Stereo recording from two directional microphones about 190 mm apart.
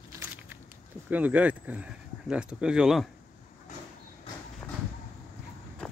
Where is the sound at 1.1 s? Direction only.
10° right (ahead or behind).